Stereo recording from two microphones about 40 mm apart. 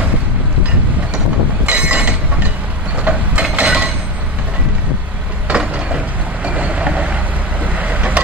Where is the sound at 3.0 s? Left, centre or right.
Right.